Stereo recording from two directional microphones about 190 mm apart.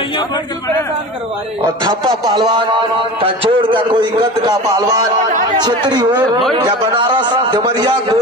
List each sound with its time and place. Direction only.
1.6 s a man's voice: 20° right (ahead or behind)
7.2 s a man's voice: 25° right (ahead or behind)